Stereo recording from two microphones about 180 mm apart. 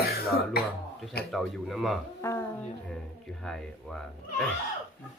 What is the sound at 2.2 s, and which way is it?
Speech, 15° left (ahead or behind).